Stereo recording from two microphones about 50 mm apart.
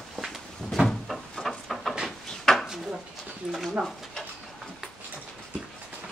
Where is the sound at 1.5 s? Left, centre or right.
Centre.